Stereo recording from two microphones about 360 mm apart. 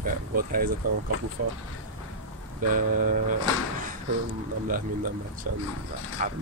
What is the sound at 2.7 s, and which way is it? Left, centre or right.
Speech, right.